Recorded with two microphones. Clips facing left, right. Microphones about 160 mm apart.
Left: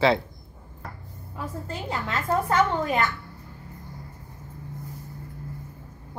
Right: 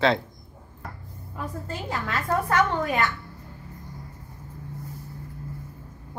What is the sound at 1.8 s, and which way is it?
Speech, 25° left (ahead or behind).